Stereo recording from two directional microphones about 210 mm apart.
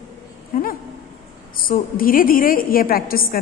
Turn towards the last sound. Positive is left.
turn(degrees=45)  # may be behind; listen again after turning